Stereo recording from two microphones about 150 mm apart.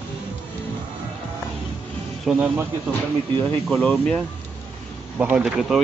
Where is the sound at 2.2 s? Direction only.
10° right (ahead or behind).